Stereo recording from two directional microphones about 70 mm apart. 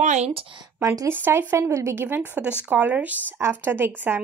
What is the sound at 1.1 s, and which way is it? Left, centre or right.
Speech, right.